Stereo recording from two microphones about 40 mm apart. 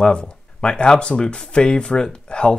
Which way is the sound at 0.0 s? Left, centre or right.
Left.